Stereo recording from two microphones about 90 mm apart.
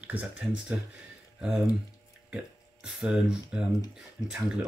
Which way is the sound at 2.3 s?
10° right (ahead or behind).